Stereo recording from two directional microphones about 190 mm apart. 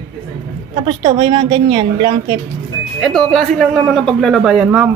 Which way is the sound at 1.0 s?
25° right (ahead or behind).